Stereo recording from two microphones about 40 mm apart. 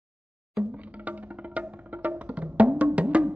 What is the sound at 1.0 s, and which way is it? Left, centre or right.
Music, right.